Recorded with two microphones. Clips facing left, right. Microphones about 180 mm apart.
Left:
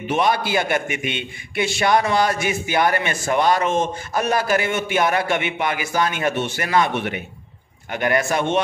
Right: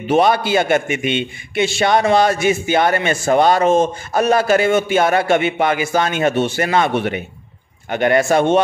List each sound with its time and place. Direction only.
0.1 s a man's voice: 30° right (ahead or behind)